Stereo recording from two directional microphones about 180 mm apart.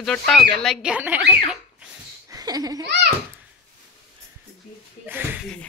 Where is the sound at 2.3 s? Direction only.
20° right (ahead or behind).